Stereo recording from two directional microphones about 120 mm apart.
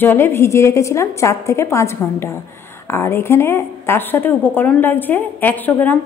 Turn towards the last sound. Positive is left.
turn(degrees=15)  # may be behind; listen again after turning